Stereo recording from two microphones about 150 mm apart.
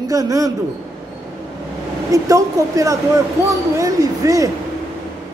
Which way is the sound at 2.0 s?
20° right (ahead or behind).